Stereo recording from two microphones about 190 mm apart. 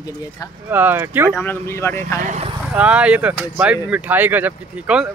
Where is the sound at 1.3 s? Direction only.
10° left (ahead or behind).